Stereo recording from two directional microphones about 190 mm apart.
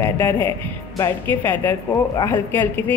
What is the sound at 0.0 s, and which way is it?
A woman's voice, 15° left (ahead or behind).